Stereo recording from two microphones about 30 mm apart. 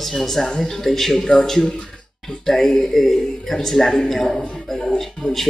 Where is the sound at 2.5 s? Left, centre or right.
Centre.